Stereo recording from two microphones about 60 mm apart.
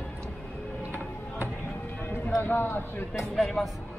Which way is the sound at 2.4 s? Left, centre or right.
Left.